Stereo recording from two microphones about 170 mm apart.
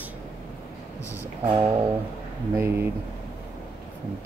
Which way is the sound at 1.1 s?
10° right (ahead or behind).